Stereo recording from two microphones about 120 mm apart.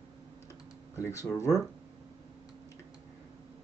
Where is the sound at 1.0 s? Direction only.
25° left (ahead or behind).